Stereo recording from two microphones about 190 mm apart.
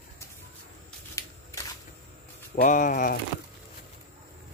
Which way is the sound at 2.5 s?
45° left (ahead or behind).